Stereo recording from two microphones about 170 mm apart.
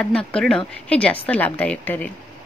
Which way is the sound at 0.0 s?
5° left (ahead or behind).